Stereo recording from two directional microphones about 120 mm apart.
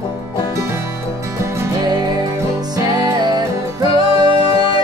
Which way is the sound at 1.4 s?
25° right (ahead or behind).